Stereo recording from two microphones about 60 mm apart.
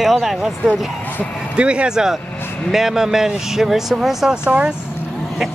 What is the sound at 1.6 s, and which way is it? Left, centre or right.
Speech, centre.